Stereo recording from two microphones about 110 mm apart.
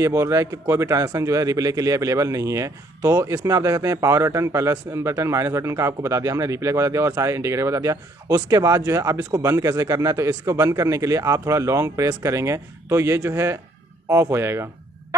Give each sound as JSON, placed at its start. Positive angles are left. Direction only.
{"t": 0.0, "sound": "a man's voice", "side_deg": -30}